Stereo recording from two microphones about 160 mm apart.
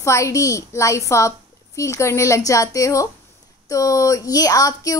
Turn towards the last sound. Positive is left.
turn(degrees=20)  # may be behind; listen again after turning